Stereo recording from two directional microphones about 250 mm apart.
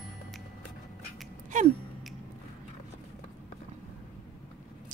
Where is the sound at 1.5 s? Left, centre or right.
Right.